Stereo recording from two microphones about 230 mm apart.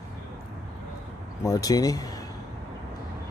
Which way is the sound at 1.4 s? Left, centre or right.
Centre.